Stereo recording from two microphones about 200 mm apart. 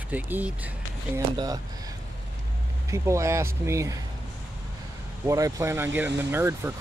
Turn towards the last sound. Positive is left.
turn(degrees=-10)  # may be behind; listen again after turning